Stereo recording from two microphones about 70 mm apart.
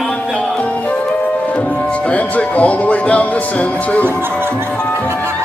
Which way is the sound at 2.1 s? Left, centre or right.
Centre.